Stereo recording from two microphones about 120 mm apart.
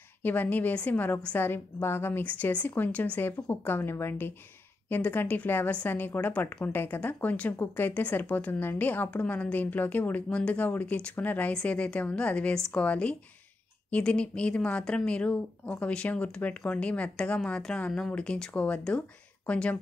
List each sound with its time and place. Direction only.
0.2 s a woman's voice: 15° left (ahead or behind)